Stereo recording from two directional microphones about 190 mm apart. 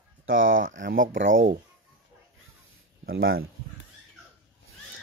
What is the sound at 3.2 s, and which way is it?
Speech, 90° right.